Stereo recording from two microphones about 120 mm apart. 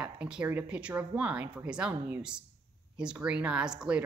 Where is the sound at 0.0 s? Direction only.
10° right (ahead or behind).